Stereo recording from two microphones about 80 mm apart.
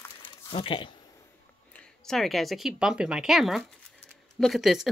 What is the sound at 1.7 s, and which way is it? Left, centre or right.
A woman's voice, centre.